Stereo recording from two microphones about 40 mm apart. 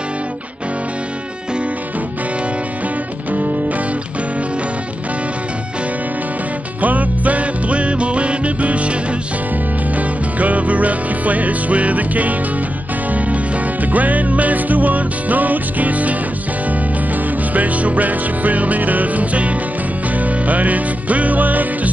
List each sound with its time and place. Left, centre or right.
3.3 s music: right
6.8 s music: right
9.9 s music: right